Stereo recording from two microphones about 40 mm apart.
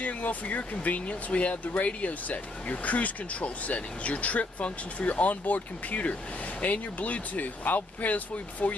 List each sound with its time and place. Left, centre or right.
0.0 s speech: left